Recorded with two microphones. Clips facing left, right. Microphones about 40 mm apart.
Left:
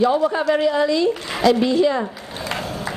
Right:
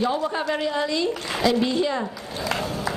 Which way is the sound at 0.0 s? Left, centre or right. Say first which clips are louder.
Left 6 dB; left.